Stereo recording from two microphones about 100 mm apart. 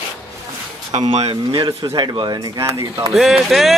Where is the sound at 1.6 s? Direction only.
45° right (ahead or behind).